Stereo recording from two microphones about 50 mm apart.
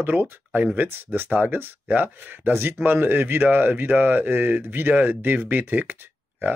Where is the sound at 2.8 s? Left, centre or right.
Right.